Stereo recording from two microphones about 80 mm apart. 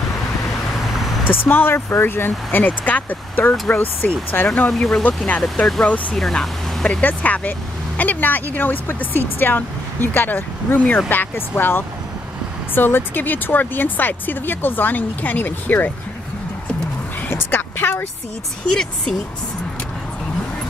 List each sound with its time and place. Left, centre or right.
1.2 s speech: left
4.6 s speech: centre
5.0 s speech: centre
6.1 s speech: centre; by 15.9 s left
17.3 s a sound: left
18.6 s speech: centre